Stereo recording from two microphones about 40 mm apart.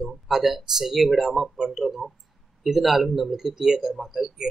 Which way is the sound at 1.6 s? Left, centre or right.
Centre.